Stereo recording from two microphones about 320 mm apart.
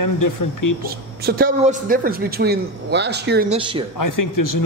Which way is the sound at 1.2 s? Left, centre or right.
Right.